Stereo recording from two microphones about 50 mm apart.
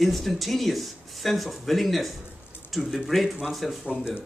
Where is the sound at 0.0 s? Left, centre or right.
Centre.